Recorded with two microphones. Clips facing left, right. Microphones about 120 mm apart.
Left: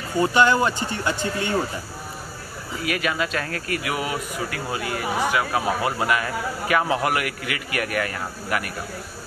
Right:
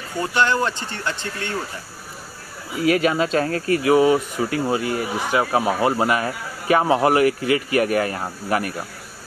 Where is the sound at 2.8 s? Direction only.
30° right (ahead or behind).